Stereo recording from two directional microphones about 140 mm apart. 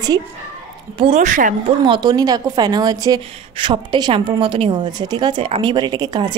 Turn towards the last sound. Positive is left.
turn(degrees=-30)  # may be behind; listen again after turning